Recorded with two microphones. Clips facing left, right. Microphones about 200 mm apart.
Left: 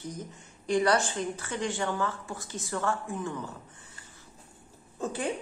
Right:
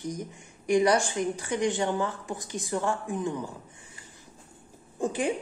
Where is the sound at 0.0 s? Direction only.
15° right (ahead or behind).